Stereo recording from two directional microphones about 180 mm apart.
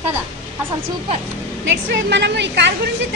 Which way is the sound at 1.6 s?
75° right (ahead or behind).